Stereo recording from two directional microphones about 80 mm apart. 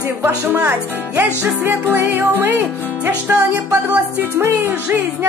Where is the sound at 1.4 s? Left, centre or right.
Right.